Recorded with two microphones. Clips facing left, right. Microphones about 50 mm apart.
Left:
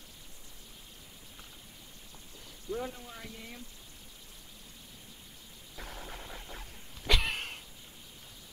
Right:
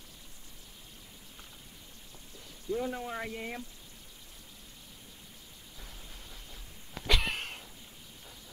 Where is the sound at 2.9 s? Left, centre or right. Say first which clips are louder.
Right 9 dB; right.